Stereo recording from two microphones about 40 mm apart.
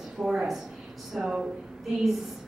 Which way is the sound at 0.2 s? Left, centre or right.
Centre.